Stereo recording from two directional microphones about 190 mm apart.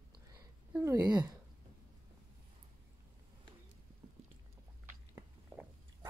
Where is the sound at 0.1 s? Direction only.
20° right (ahead or behind).